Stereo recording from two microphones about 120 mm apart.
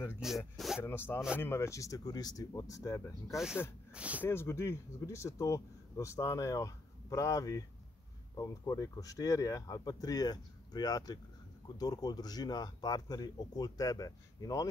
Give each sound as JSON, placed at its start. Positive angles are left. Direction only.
{"t": 0.1, "sound": "speech", "side_deg": -5}
{"t": 0.8, "sound": "speech", "side_deg": 20}
{"t": 3.9, "sound": "speech", "side_deg": -10}
{"t": 4.2, "sound": "speech", "side_deg": 20}